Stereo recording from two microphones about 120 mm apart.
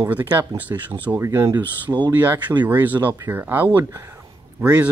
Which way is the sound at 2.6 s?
15° right (ahead or behind).